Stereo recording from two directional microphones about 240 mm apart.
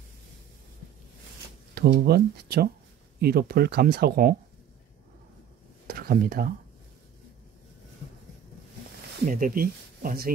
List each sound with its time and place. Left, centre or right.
1.8 s speech: right
5.9 s speech: right
9.3 s speech: right